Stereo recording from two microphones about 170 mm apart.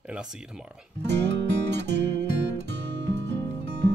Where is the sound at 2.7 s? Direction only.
90° right.